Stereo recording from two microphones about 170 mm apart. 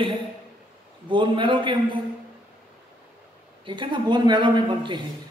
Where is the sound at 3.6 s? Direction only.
30° right (ahead or behind).